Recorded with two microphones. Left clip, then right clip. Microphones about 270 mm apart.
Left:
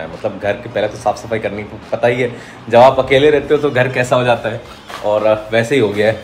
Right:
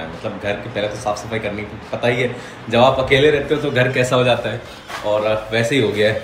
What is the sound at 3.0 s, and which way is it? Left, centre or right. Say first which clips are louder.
Speech: left 3 dB; centre.